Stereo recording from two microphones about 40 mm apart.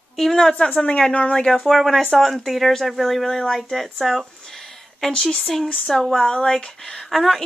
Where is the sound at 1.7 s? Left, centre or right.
Centre.